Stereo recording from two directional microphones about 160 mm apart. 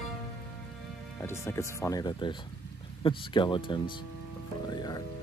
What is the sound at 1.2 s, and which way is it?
Speech, 15° left (ahead or behind).